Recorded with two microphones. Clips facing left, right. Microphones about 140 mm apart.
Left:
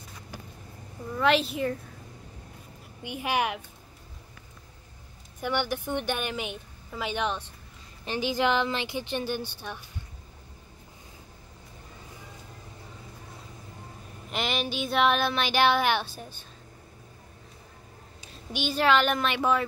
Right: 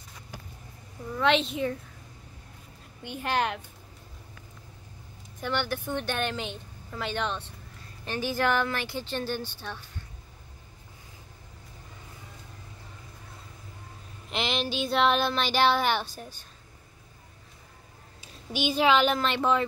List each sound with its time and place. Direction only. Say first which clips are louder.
1.1 s a woman's voice: left 1 dB; 5° left (ahead or behind)
3.0 s a woman's voice: even; 10° left (ahead or behind)
5.4 s a woman's voice: left 1 dB; 10° left (ahead or behind)
14.3 s a woman's voice: even; 5° left (ahead or behind)
18.5 s a woman's voice: right 1 dB; 10° right (ahead or behind)
19.2 s a woman's voice: even; 5° left (ahead or behind)